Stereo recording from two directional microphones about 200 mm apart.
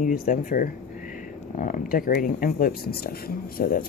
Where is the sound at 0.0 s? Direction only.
40° left (ahead or behind).